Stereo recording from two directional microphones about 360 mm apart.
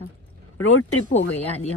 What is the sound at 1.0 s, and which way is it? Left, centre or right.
Speech, left.